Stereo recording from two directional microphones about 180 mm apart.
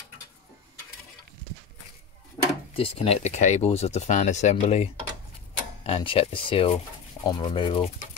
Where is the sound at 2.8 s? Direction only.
30° left (ahead or behind).